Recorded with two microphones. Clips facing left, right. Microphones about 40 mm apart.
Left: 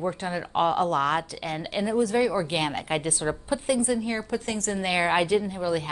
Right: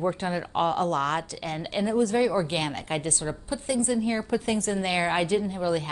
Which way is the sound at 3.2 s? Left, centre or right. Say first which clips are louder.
Left 4 dB; left.